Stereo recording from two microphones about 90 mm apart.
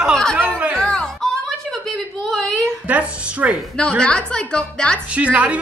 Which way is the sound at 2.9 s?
15° right (ahead or behind).